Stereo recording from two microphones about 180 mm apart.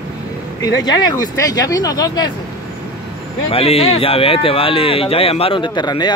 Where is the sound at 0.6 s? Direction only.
20° left (ahead or behind).